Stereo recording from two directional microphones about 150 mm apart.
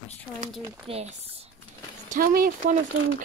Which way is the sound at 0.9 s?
45° right (ahead or behind).